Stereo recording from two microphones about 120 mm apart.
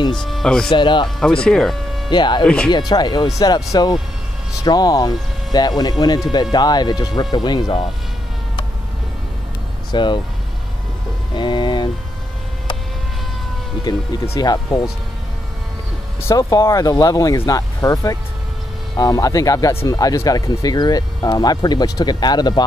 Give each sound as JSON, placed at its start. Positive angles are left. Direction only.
{"t": 0.1, "sound": "speech", "side_deg": 5}
{"t": 0.7, "sound": "speech", "side_deg": 40}
{"t": 1.2, "sound": "speech", "side_deg": 5}
{"t": 2.0, "sound": "speech", "side_deg": 40}
{"t": 2.4, "sound": "speech", "side_deg": 5}
{"t": 2.7, "sound": "speech", "side_deg": 35}
{"t": 9.9, "sound": "speech", "side_deg": 40}
{"t": 11.3, "sound": "a sound", "side_deg": 40}
{"t": 14.4, "sound": "speech", "side_deg": 35}
{"t": 16.2, "sound": "speech", "side_deg": 25}